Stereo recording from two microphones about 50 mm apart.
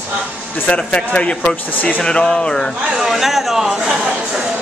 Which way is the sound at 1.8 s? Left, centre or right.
Left.